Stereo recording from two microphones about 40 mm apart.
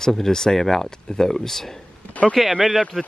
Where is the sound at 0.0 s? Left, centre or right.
Centre.